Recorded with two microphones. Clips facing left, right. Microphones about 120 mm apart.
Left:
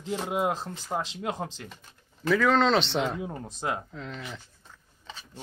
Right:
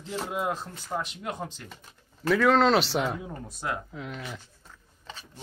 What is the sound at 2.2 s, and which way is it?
Speech, centre (ahead or behind).